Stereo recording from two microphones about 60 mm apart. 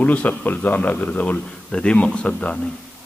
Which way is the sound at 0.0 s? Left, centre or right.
Left.